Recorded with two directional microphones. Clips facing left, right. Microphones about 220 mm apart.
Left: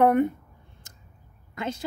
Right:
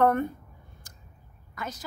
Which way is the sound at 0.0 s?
15° left (ahead or behind).